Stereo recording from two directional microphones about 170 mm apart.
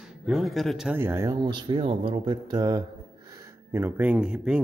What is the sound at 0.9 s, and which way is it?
Speech, 15° right (ahead or behind).